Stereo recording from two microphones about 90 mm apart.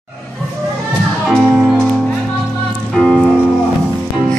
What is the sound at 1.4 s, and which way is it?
Music, 5° right (ahead or behind).